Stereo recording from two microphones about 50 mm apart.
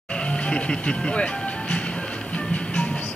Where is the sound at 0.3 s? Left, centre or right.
Left.